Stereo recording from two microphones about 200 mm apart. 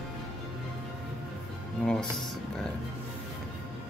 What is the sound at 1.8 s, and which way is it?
Music, 5° left (ahead or behind).